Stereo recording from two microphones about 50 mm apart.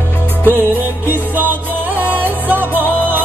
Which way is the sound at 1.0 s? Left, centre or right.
Right.